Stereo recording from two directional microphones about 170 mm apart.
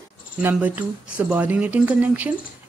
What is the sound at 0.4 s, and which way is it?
Speech, 10° right (ahead or behind).